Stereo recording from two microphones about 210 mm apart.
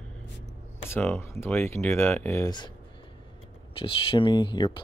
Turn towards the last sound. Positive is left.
turn(degrees=20)  # may be behind; listen again after turning